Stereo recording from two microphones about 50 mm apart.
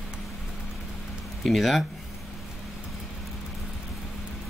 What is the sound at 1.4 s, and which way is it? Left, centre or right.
Speech, centre.